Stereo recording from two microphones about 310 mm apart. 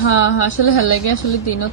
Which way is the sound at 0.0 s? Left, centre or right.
Left.